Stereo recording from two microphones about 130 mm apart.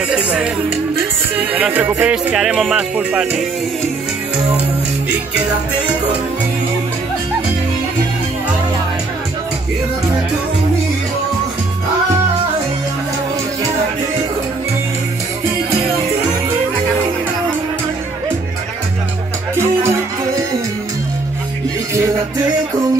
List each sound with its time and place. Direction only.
0.1 s speech: 5° right (ahead or behind)
19.5 s music: 20° right (ahead or behind)